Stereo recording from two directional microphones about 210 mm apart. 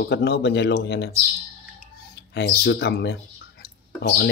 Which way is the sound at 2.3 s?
55° left (ahead or behind).